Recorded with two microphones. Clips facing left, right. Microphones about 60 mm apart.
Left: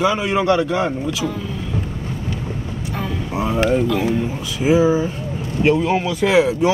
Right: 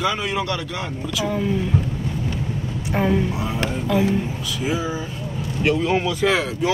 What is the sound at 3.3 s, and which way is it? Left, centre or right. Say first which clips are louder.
Speech: left 6 dB; left.